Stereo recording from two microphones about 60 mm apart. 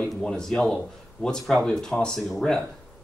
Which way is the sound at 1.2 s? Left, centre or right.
Centre.